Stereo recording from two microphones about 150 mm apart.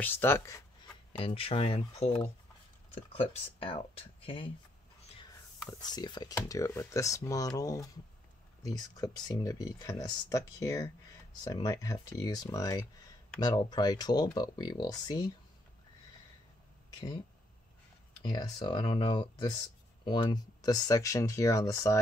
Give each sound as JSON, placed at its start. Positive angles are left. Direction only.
{"t": 0.0, "sound": "speech", "side_deg": 15}
{"t": 1.1, "sound": "speech", "side_deg": 40}
{"t": 5.8, "sound": "speech", "side_deg": 25}
{"t": 18.2, "sound": "speech", "side_deg": 30}